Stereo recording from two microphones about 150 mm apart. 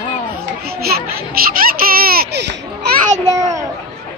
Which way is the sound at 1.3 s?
75° right (ahead or behind).